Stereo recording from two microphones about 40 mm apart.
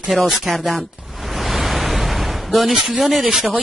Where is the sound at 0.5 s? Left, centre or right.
Centre.